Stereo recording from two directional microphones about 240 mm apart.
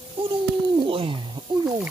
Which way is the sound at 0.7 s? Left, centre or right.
Right.